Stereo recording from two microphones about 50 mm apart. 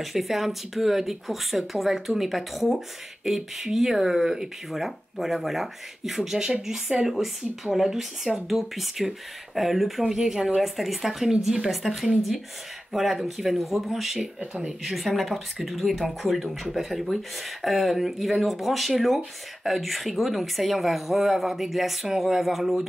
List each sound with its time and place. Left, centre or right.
0.0 s speech: centre
14.4 s speech: centre
14.8 s speech: centre